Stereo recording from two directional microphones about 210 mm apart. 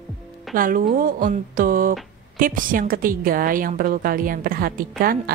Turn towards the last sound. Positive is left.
turn(degrees=-45)  # may be behind; listen again after turning